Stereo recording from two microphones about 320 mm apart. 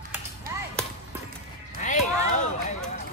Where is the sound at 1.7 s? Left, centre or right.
Left.